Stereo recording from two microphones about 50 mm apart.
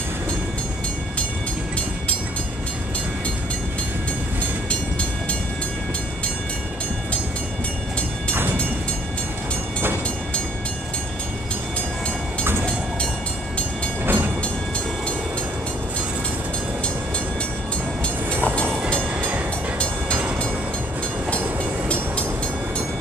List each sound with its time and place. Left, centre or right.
8.3 s train: right
14.0 s train: right
18.4 s train: left
18.9 s train: right